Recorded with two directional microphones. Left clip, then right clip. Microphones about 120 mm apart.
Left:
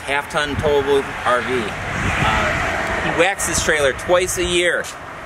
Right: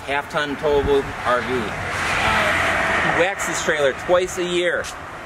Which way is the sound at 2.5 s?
40° right (ahead or behind).